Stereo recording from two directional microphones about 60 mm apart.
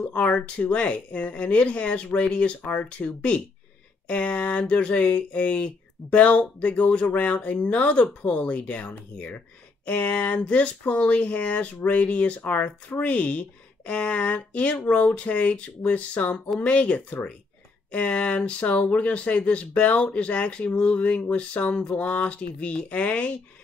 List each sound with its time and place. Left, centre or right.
0.0 s speech: left